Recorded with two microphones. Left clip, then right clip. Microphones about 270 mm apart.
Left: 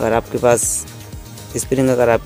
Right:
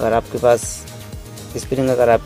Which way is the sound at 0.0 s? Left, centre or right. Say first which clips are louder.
Even; centre.